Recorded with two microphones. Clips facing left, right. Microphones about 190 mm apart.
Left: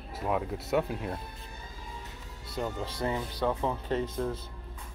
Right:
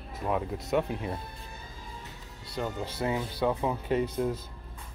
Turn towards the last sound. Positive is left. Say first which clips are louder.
# right 3 dB
turn(degrees=-10)  # may be behind; listen again after turning